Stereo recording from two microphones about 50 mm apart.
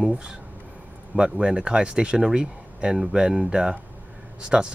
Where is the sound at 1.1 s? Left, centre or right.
Centre.